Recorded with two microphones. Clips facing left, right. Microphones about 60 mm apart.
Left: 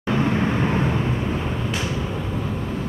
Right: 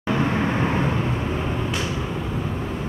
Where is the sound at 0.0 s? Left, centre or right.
Centre.